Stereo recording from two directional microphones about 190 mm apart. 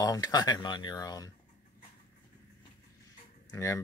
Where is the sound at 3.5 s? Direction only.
15° left (ahead or behind).